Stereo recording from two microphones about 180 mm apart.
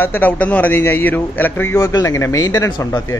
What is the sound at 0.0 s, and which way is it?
A man's voice, 10° left (ahead or behind).